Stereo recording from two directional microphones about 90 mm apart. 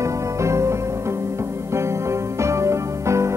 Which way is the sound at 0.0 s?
35° right (ahead or behind).